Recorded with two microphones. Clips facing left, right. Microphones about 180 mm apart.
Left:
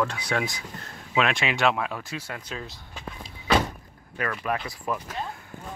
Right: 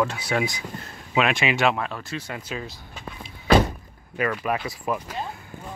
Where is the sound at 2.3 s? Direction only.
5° right (ahead or behind).